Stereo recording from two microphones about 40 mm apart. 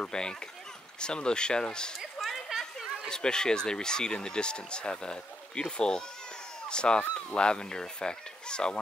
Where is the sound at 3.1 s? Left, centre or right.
Centre.